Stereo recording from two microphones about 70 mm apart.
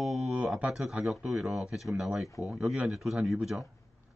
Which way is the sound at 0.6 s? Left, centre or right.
Centre.